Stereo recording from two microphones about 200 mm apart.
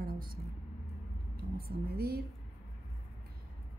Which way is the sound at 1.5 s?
50° right (ahead or behind).